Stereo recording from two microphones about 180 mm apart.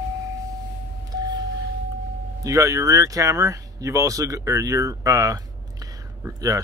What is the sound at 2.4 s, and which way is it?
Speech, 15° right (ahead or behind).